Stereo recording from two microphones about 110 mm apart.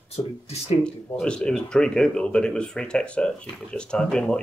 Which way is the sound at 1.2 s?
10° left (ahead or behind).